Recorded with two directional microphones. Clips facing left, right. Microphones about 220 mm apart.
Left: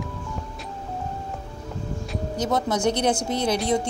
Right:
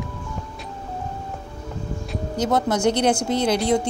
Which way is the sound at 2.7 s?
15° left (ahead or behind).